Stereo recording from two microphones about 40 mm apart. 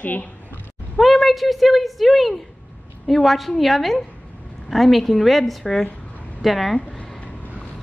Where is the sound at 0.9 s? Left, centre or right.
Centre.